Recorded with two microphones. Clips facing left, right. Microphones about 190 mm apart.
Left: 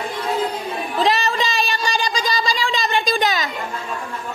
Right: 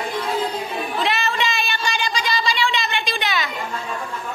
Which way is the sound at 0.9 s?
35° left (ahead or behind).